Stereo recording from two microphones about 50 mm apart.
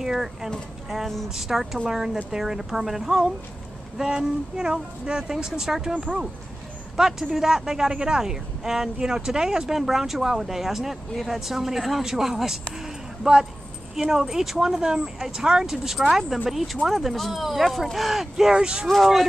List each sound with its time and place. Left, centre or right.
0.0 s speech: centre
7.0 s speech: centre
18.5 s speech: centre
18.9 s speech: centre